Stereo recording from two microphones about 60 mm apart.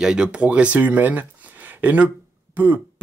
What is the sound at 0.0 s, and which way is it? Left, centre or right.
Speech, centre.